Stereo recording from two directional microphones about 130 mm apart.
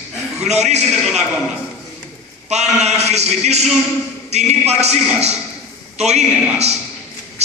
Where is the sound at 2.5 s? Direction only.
60° right (ahead or behind).